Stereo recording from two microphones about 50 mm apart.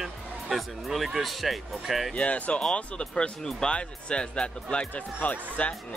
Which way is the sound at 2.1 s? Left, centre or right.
Left.